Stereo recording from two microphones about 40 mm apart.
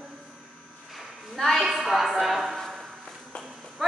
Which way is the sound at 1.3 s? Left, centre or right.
Centre.